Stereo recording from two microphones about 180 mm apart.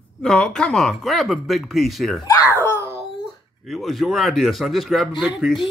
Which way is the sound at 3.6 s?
Centre (ahead or behind).